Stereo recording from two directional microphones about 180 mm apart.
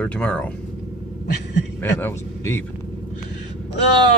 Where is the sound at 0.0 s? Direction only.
5° left (ahead or behind).